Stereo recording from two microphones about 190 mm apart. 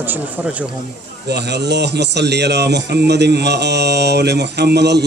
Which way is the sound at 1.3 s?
65° right (ahead or behind).